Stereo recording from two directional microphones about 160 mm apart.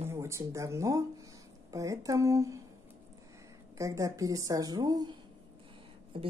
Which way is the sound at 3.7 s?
20° right (ahead or behind).